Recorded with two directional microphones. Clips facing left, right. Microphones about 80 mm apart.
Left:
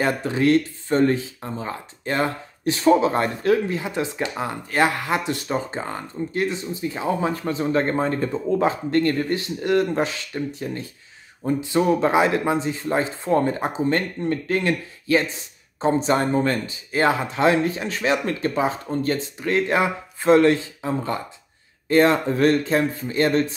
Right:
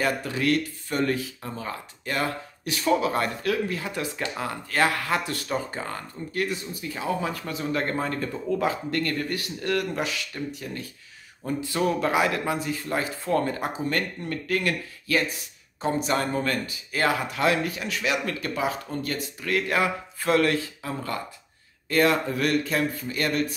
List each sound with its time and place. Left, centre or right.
0.0 s speech: left